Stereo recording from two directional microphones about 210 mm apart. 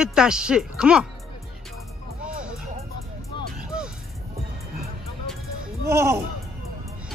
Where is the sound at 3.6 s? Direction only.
5° right (ahead or behind).